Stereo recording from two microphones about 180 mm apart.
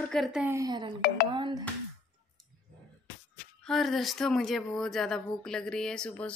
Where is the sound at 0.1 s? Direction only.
Centre (ahead or behind).